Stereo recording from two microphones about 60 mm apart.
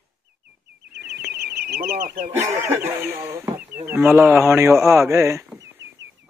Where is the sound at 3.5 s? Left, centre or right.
Right.